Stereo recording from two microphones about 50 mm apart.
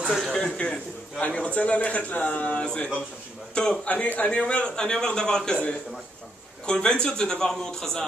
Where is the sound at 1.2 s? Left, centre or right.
Left.